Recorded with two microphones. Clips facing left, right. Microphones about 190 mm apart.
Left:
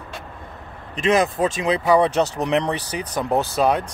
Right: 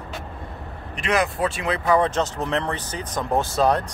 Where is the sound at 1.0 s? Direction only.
20° left (ahead or behind).